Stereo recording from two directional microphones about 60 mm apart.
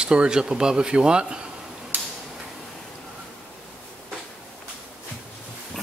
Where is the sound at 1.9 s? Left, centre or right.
Right.